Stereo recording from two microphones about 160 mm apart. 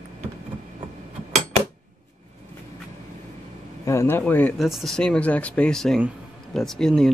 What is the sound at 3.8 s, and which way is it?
Speech, 15° left (ahead or behind).